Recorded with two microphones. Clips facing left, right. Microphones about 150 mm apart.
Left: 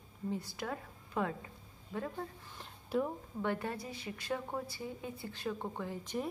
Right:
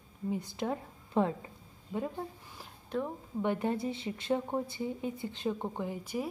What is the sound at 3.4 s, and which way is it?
A woman's voice, 20° right (ahead or behind).